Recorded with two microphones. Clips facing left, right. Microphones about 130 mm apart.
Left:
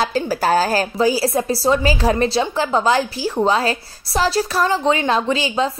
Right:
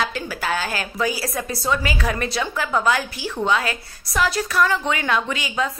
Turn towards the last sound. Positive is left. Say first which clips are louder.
# left 5 dB
turn(degrees=30)  # may be behind; listen again after turning